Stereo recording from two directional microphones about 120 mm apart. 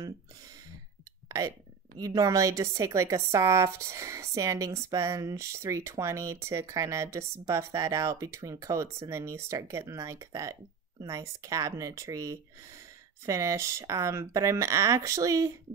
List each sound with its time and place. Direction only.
2.0 s speech: 30° right (ahead or behind)